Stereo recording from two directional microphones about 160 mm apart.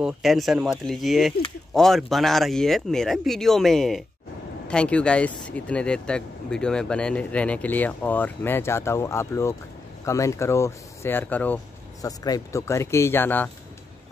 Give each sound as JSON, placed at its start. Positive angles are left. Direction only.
{"t": 0.0, "sound": "speech", "side_deg": 0}
{"t": 12.0, "sound": "speech", "side_deg": 20}